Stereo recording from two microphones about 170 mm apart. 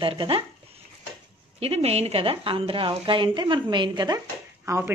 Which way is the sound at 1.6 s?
35° right (ahead or behind).